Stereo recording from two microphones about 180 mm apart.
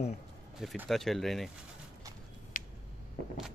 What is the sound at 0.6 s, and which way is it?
Speech, centre (ahead or behind).